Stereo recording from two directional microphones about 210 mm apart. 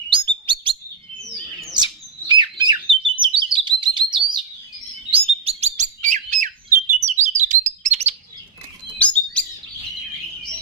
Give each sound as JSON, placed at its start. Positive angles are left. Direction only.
{"t": 0.1, "sound": "chirp", "side_deg": -25}
{"t": 1.8, "sound": "bird", "side_deg": -20}
{"t": 7.1, "sound": "chirp", "side_deg": -35}
{"t": 8.9, "sound": "chirp", "side_deg": 5}